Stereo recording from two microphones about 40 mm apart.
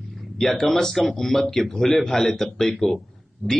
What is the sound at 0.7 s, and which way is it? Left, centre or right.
Speech, centre.